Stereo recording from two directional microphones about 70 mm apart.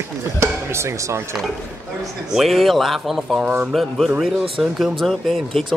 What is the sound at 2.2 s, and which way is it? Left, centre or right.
Speech, centre.